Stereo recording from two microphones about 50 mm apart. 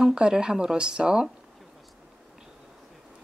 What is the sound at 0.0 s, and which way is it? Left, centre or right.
A woman's voice, centre.